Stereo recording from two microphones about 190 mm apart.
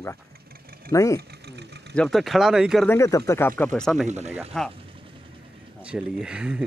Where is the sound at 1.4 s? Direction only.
60° right (ahead or behind).